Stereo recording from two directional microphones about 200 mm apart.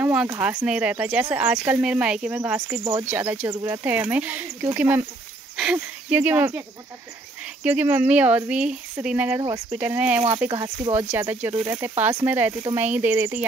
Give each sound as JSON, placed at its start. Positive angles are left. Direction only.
{"t": 0.0, "sound": "speech", "side_deg": -5}
{"t": 7.6, "sound": "speech", "side_deg": -10}